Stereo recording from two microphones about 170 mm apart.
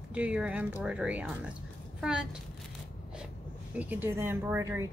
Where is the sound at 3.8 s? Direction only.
10° right (ahead or behind).